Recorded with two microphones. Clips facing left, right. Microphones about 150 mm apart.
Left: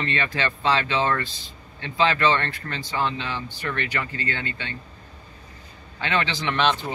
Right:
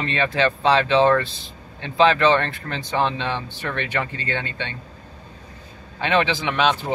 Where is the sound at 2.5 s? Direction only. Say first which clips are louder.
Right 4 dB; 20° right (ahead or behind).